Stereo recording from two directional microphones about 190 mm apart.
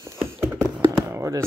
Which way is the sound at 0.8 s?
15° right (ahead or behind).